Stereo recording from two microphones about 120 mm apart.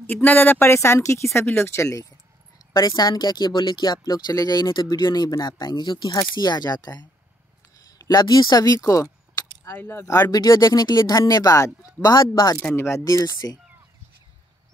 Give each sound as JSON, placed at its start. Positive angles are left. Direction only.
{"t": 0.0, "sound": "speech", "side_deg": 15}
{"t": 9.8, "sound": "speech", "side_deg": 20}
{"t": 10.3, "sound": "speech", "side_deg": 30}